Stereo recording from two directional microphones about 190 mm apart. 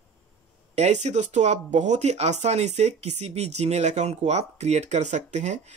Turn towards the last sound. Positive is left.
turn(degrees=-35)  # may be behind; listen again after turning